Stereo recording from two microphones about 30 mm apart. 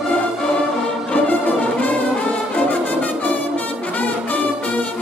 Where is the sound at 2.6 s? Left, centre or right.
Left.